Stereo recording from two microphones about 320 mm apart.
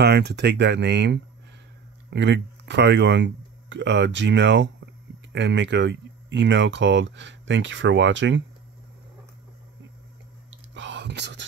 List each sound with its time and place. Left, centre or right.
0.0 s speech: right
10.5 s whispering: right